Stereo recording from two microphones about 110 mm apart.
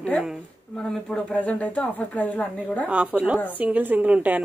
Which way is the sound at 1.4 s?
15° left (ahead or behind).